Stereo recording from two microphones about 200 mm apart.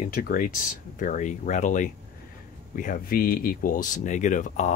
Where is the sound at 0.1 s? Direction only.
45° left (ahead or behind).